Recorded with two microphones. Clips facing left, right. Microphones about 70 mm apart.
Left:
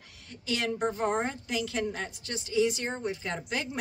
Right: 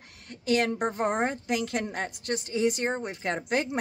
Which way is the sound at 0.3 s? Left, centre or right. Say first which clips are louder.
Right 6 dB; right.